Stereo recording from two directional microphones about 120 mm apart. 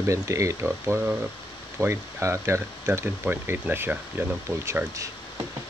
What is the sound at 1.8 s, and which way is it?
Speech, 20° right (ahead or behind).